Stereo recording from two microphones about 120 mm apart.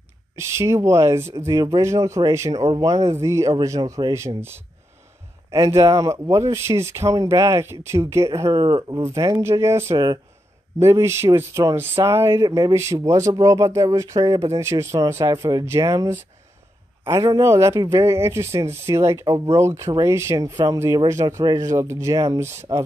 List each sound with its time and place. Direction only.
0.4 s a man's voice: 25° right (ahead or behind)
12.4 s speech: 35° right (ahead or behind)
12.7 s a man's voice: 25° right (ahead or behind)